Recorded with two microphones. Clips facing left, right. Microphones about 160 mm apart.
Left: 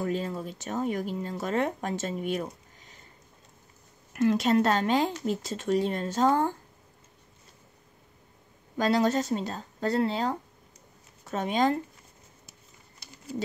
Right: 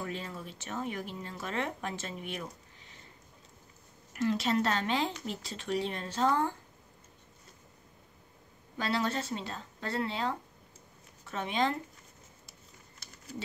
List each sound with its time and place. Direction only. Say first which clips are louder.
0.0 s speech: left 9 dB; 40° left (ahead or behind)
4.1 s speech: left 6 dB; 50° left (ahead or behind)
8.7 s speech: left 8 dB; 40° left (ahead or behind)